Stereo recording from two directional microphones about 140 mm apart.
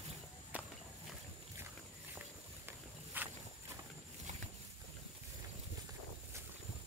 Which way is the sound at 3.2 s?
15° right (ahead or behind).